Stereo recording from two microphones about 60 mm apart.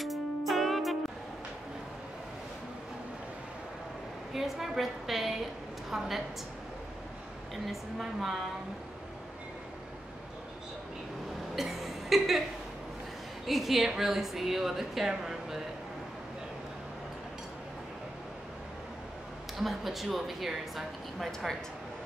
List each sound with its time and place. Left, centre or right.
0.0 s music: centre
4.3 s a woman's voice: centre
7.6 s a woman's voice: centre
11.5 s music: centre
13.5 s a woman's voice: centre
19.6 s a woman's voice: centre